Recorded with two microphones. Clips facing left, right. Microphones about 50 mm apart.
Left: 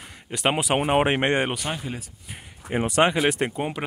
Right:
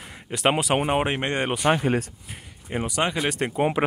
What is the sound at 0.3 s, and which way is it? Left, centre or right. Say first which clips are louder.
Speech: right 1 dB; centre.